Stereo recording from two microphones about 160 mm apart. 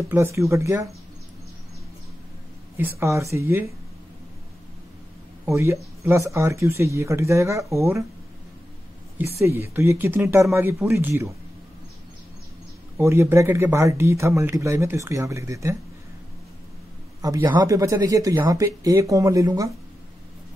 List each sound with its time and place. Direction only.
0.1 s speech: 15° right (ahead or behind)
2.8 s speech: 15° right (ahead or behind)
5.5 s speech: 15° right (ahead or behind)
9.2 s speech: 15° right (ahead or behind)
12.9 s speech: 15° right (ahead or behind)
17.2 s speech: 25° right (ahead or behind)